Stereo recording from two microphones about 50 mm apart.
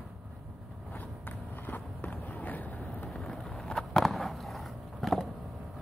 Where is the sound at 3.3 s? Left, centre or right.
Centre.